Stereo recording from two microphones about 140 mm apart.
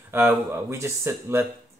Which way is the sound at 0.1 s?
20° right (ahead or behind).